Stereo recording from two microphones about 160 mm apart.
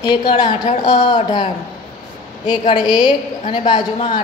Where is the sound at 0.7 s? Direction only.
45° left (ahead or behind).